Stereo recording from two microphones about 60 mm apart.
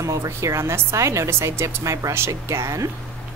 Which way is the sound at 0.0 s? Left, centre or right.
Right.